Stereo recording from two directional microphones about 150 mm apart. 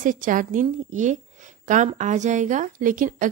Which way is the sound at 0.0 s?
60° right (ahead or behind).